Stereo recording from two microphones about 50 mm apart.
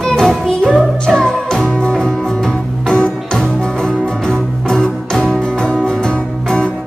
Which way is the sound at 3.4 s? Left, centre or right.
Centre.